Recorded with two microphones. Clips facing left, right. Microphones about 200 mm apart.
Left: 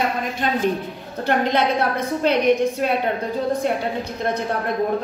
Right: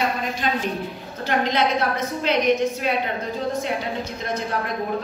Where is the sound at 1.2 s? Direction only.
60° left (ahead or behind).